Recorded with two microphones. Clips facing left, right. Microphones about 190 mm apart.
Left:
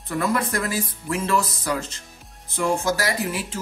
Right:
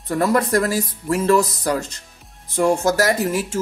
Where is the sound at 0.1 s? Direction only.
40° right (ahead or behind).